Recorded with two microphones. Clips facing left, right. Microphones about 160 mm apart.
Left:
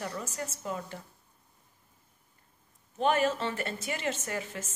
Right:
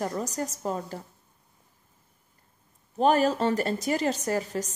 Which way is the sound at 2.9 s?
35° right (ahead or behind).